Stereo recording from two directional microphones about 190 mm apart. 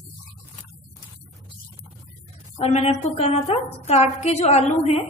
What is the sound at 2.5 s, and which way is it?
A woman's voice, 35° left (ahead or behind).